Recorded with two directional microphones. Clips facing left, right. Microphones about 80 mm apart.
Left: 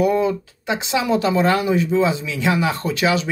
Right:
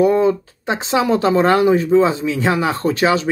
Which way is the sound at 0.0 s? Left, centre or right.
Right.